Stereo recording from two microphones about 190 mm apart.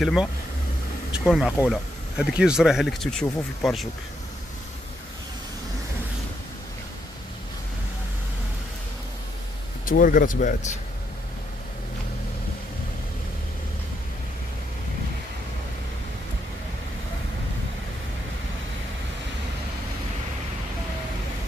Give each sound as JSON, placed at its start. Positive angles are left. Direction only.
{"t": 0.0, "sound": "speech", "side_deg": 0}
{"t": 9.8, "sound": "speech", "side_deg": 45}